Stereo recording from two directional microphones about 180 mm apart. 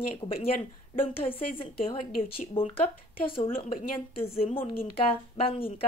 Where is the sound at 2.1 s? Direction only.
55° left (ahead or behind).